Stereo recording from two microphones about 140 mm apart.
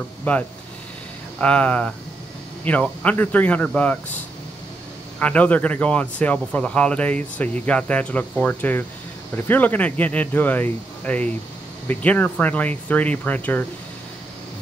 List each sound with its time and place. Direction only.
0.2 s speech: 10° left (ahead or behind)
5.2 s speech: 10° left (ahead or behind)